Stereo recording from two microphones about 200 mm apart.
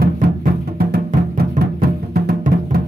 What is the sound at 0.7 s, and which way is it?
Music, 50° right (ahead or behind).